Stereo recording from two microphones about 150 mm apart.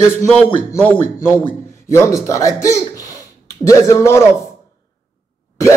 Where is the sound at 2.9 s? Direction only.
25° left (ahead or behind).